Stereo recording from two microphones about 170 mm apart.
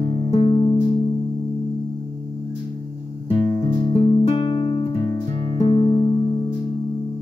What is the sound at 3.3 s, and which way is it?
Music, 35° left (ahead or behind).